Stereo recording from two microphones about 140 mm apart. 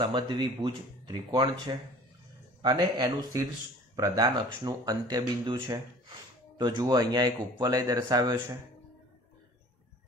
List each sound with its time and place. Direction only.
0.0 s speech: 35° right (ahead or behind)